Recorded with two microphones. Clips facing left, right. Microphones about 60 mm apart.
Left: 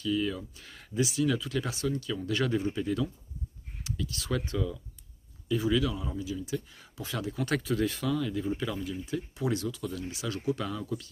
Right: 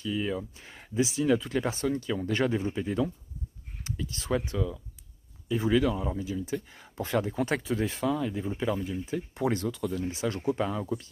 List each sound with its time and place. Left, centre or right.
0.0 s speech: right
5.5 s speech: right
7.4 s speech: right
9.3 s speech: right